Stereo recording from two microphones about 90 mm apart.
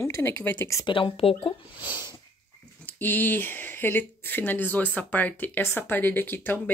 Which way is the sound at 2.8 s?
20° left (ahead or behind).